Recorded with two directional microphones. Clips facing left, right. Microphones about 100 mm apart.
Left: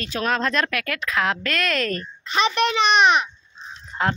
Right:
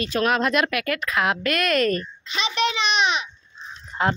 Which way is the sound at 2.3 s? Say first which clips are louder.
Left 4 dB; 50° left (ahead or behind).